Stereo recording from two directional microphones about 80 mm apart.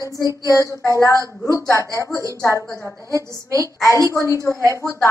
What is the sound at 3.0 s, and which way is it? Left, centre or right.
Speech, right.